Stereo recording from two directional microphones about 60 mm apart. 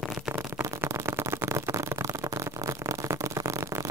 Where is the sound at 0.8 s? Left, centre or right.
Right.